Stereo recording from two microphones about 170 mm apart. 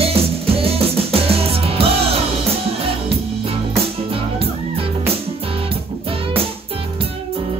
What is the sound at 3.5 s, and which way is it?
Music, 35° right (ahead or behind).